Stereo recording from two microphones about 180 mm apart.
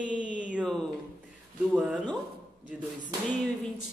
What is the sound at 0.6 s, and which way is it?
A man's voice, 5° left (ahead or behind).